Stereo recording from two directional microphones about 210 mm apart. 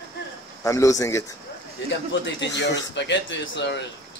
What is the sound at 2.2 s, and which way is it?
Speech, 55° left (ahead or behind).